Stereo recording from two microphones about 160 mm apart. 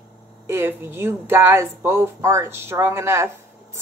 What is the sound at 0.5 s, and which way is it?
Speech, 15° right (ahead or behind).